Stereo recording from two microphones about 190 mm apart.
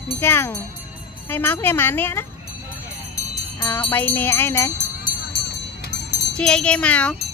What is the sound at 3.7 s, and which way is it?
Music, 10° left (ahead or behind).